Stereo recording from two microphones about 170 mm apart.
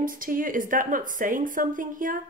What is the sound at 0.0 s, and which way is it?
Speech, 55° right (ahead or behind).